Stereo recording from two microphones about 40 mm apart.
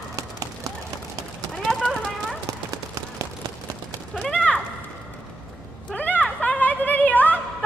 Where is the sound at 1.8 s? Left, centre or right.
Centre.